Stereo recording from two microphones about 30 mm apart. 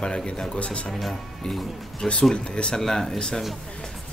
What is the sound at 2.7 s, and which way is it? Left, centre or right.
Speech, centre.